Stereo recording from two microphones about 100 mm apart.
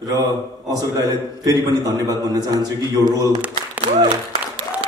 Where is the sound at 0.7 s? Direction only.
40° right (ahead or behind).